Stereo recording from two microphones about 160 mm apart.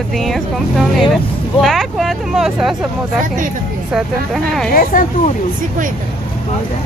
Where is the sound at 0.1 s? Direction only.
Centre (ahead or behind).